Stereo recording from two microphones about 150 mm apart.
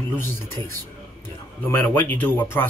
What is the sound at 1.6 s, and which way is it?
Speech, 10° left (ahead or behind).